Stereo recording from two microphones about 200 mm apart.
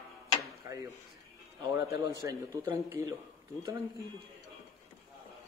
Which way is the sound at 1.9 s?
15° right (ahead or behind).